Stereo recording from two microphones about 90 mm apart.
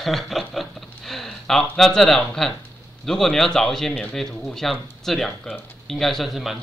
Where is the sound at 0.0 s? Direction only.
Centre (ahead or behind).